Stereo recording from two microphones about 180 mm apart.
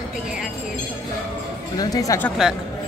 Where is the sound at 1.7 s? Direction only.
20° left (ahead or behind).